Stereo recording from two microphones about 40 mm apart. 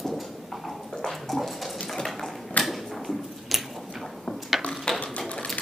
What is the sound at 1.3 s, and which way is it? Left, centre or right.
Dog, centre.